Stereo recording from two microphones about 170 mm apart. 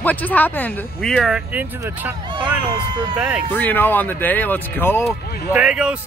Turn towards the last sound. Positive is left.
turn(degrees=-5)  # may be behind; listen again after turning